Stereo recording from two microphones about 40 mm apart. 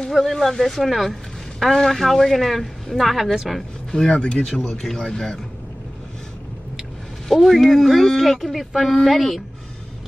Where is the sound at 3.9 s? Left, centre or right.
Centre.